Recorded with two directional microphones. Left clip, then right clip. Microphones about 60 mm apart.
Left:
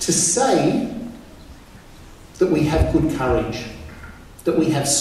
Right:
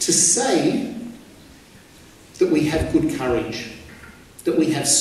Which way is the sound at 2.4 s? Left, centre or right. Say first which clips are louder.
Left 1 dB; right.